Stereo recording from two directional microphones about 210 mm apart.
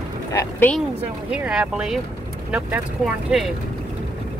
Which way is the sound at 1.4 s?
5° right (ahead or behind).